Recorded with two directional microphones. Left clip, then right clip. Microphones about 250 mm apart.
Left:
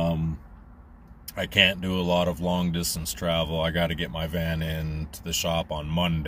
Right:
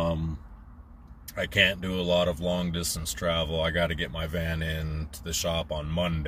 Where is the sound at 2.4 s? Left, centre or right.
Centre.